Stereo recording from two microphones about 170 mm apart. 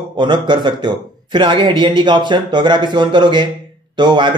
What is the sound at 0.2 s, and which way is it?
Speech, 25° right (ahead or behind).